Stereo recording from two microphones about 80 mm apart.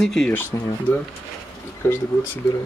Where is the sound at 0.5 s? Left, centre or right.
Left.